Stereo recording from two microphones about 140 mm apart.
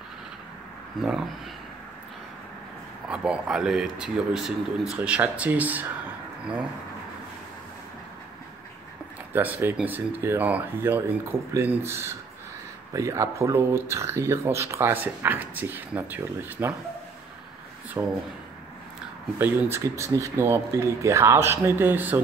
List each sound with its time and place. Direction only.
3.1 s speech: 5° right (ahead or behind)
9.3 s speech: 15° right (ahead or behind)
18.0 s speech: 20° right (ahead or behind)
19.3 s speech: 15° right (ahead or behind)